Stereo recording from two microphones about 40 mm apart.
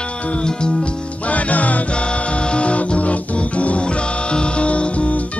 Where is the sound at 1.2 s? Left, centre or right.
Left.